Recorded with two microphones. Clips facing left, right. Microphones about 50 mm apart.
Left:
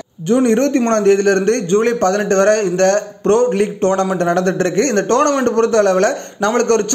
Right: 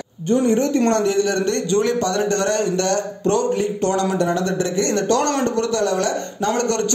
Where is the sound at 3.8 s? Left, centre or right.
Left.